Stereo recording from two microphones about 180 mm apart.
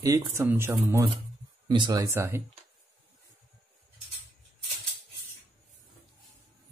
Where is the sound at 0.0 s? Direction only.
15° right (ahead or behind).